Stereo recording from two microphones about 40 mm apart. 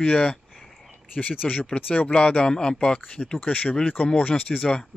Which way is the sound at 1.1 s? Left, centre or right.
Left.